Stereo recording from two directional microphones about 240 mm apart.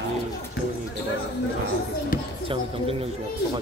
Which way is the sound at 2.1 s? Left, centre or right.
Left.